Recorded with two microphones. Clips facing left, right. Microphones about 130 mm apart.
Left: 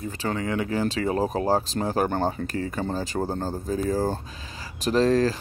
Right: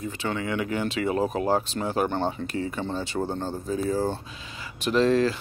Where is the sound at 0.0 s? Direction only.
35° left (ahead or behind).